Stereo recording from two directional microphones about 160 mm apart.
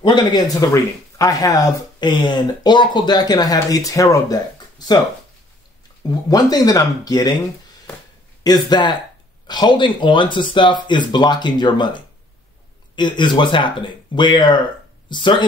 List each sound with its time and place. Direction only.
0.0 s speech: 25° left (ahead or behind)
6.0 s speech: 25° left (ahead or behind)
8.5 s speech: 25° left (ahead or behind)